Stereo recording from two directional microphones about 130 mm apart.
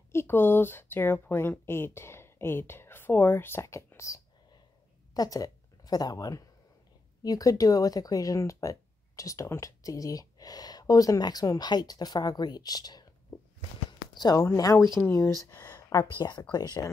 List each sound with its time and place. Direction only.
0.1 s a woman's voice: 20° left (ahead or behind)